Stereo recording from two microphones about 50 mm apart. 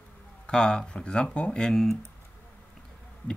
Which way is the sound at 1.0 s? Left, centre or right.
Left.